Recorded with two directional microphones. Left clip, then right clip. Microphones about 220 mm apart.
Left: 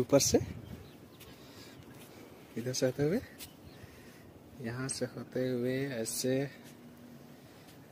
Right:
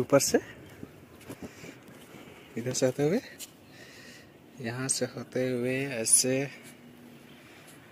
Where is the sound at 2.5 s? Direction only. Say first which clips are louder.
Right 4 dB; 20° right (ahead or behind).